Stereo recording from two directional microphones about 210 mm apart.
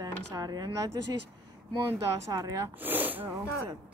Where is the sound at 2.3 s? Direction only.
15° right (ahead or behind).